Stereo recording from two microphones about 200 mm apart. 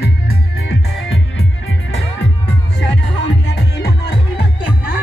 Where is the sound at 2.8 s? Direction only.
60° left (ahead or behind).